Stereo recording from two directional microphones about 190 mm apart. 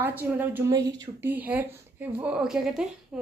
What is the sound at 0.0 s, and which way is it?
A woman's voice, 10° right (ahead or behind).